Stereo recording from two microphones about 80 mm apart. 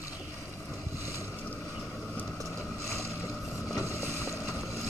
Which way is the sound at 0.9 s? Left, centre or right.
Left.